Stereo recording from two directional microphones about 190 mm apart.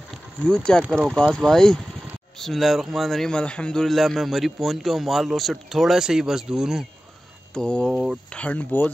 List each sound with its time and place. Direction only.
0.8 s a man's voice: 5° left (ahead or behind)